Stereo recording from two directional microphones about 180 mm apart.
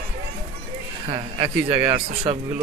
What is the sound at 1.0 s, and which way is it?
Speech, 30° right (ahead or behind).